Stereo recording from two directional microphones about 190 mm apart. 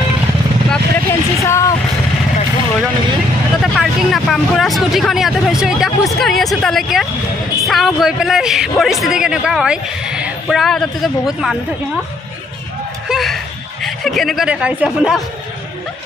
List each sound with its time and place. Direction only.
0.7 s vehicle: 10° left (ahead or behind)
3.6 s a man's voice: centre (ahead or behind)
13.1 s a man's voice: centre (ahead or behind)